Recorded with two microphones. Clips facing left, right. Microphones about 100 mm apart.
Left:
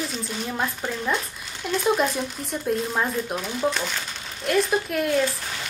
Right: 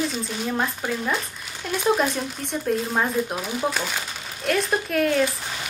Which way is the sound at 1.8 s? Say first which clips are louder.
Right 1 dB; centre (ahead or behind).